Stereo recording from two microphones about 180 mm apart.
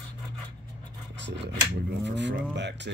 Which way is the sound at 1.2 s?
80° right.